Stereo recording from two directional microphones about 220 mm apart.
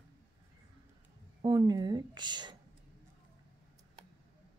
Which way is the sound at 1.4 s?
20° right (ahead or behind).